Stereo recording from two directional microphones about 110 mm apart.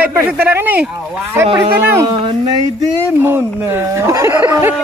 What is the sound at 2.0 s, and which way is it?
Speech, 40° right (ahead or behind).